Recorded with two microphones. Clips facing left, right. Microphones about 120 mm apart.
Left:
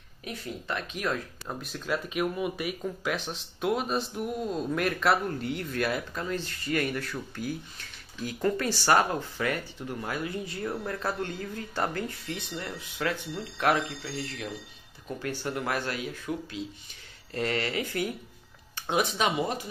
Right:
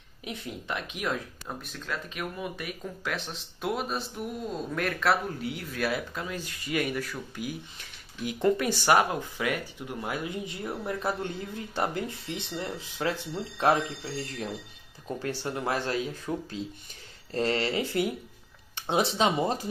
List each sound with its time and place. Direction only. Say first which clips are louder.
0.2 s speech: even; 15° right (ahead or behind)
1.5 s speech: left 4 dB; centre (ahead or behind)
8.2 s speech: right 3 dB; 20° right (ahead or behind)
15.4 s speech: right 1 dB; 25° right (ahead or behind)